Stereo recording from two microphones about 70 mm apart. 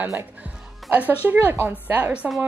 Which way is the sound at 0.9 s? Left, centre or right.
Right.